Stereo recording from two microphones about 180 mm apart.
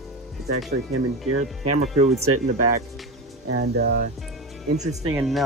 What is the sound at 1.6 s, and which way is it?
Speech, 40° right (ahead or behind).